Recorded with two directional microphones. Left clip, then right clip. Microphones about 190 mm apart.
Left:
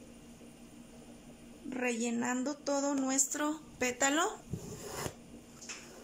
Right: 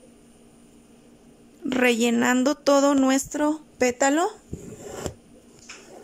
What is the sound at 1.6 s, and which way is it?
Speech, 50° right (ahead or behind).